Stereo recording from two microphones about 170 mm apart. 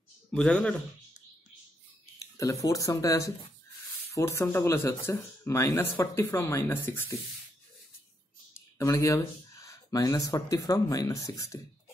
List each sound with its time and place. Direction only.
0.3 s speech: 5° left (ahead or behind)
2.1 s speech: 20° left (ahead or behind)
8.7 s speech: 15° left (ahead or behind)